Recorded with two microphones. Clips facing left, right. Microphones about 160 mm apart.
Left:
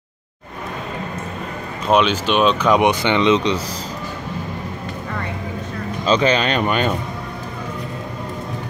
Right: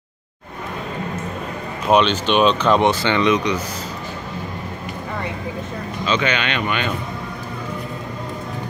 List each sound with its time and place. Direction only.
1.9 s speech: 5° left (ahead or behind); by 3.3 s 20° left (ahead or behind)
6.0 s speech: 35° left (ahead or behind)